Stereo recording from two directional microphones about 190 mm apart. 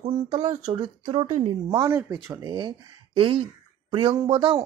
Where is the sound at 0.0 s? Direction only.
30° right (ahead or behind).